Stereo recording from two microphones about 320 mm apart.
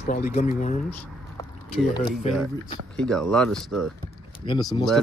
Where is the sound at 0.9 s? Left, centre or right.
Centre.